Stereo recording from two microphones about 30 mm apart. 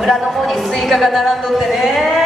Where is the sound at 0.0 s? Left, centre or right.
Centre.